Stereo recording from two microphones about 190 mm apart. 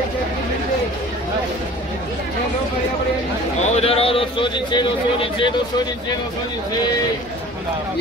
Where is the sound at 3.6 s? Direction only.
30° left (ahead or behind).